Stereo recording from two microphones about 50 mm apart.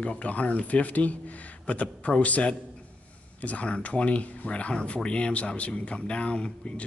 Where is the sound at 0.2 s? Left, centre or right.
Left.